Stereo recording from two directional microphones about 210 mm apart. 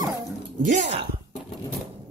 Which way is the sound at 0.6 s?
35° right (ahead or behind).